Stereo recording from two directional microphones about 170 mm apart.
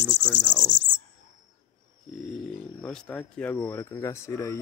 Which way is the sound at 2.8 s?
5° left (ahead or behind).